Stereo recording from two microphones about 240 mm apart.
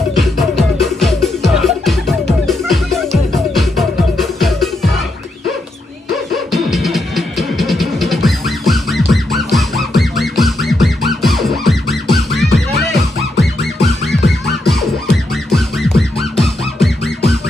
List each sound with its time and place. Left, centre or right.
0.2 s music: centre
6.3 s music: centre